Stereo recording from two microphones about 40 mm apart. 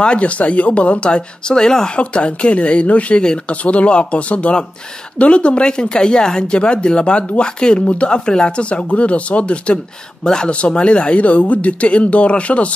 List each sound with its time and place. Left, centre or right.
0.0 s speech: left
2.0 s speech: left
10.2 s speech: centre